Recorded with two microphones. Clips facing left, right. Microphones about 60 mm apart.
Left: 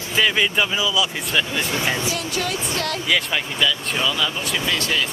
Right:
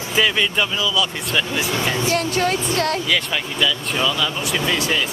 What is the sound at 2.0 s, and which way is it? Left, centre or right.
Speech, right.